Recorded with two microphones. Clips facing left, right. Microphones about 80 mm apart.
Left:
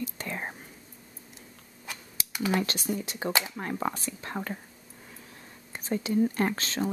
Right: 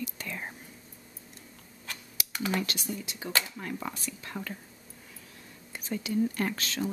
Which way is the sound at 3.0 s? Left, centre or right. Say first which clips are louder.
Left 3 dB; left.